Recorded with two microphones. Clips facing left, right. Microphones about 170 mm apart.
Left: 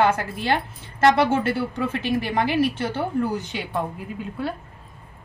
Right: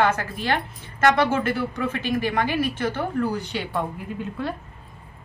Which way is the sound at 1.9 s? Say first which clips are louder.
Even; 30° left (ahead or behind).